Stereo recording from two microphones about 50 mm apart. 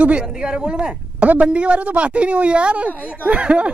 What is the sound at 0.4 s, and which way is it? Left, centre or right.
Speech, centre.